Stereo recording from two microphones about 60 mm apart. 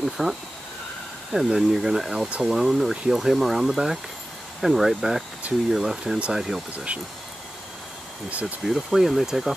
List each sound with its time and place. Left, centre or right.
0.0 s speech: centre
8.3 s speech: right
8.6 s speech: centre